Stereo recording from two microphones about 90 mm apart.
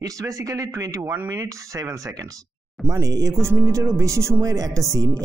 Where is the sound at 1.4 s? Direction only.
45° right (ahead or behind).